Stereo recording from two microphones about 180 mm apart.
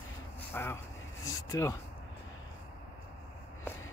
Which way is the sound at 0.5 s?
15° left (ahead or behind).